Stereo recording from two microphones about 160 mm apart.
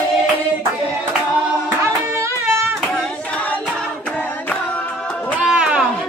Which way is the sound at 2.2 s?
15° right (ahead or behind).